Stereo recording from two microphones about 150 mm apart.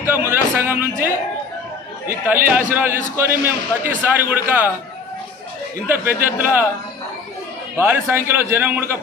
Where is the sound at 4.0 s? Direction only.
10° right (ahead or behind).